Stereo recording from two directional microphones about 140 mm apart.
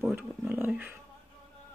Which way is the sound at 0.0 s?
15° right (ahead or behind).